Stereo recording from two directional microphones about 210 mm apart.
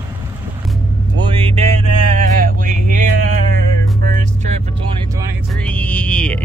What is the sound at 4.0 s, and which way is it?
Music, 35° right (ahead or behind).